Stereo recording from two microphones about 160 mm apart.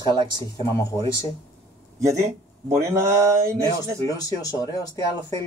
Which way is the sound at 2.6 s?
20° right (ahead or behind).